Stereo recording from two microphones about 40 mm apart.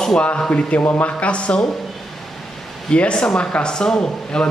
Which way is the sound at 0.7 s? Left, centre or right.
Left.